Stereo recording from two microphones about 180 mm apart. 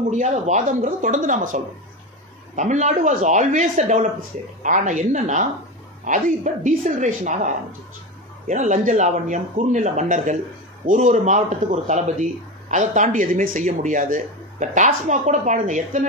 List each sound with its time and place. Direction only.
0.1 s a man's voice: 40° right (ahead or behind)